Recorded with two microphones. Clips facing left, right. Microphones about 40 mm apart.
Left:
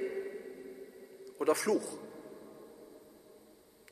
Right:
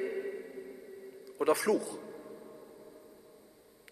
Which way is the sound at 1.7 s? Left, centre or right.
Right.